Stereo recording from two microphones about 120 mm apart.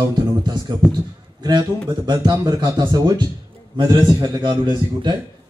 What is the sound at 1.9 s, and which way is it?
A man's voice, 35° right (ahead or behind).